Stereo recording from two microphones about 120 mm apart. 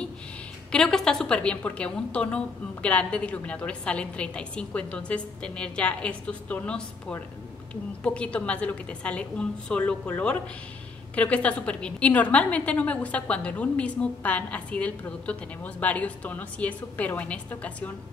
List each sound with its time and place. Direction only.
0.7 s a woman's voice: 5° left (ahead or behind)